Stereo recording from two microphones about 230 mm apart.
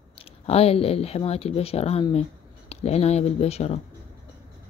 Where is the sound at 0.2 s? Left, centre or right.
Left.